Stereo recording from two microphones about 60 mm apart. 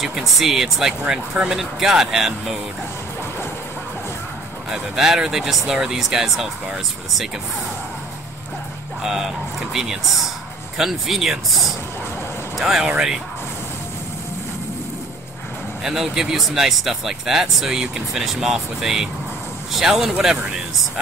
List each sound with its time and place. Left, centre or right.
0.0 s speech: centre
4.6 s speech: centre
9.0 s speech: centre
15.8 s speech: centre